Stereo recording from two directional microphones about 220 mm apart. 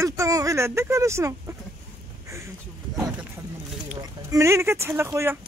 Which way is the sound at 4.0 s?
15° right (ahead or behind).